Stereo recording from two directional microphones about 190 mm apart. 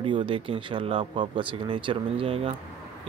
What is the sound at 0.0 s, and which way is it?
Speech, 25° right (ahead or behind).